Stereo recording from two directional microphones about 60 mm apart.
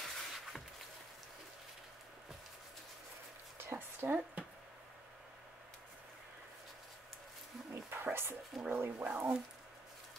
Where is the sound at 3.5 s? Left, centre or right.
Right.